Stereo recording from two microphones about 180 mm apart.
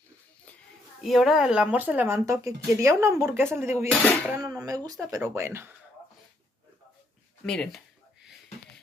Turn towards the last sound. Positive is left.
turn(degrees=5)  # may be behind; listen again after turning